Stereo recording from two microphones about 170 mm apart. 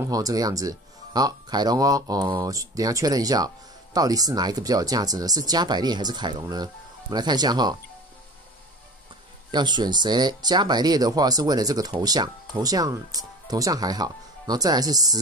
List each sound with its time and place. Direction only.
0.0 s speech: 20° right (ahead or behind)
9.5 s speech: 25° right (ahead or behind)